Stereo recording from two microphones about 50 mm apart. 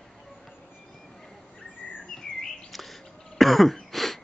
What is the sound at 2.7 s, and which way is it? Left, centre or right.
Throat clearing, centre.